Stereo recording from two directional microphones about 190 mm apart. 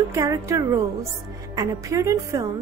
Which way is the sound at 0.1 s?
15° right (ahead or behind).